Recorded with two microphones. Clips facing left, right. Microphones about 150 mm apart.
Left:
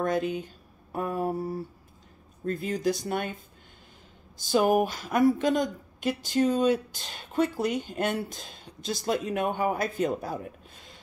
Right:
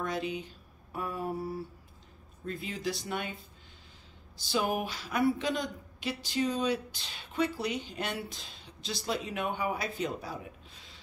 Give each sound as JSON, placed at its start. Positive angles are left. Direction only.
{"t": 0.0, "sound": "speech", "side_deg": 50}
{"t": 4.4, "sound": "speech", "side_deg": 45}